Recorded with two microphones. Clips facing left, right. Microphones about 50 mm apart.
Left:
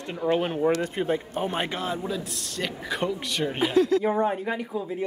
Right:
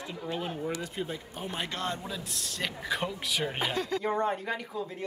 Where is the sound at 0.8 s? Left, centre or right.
Left.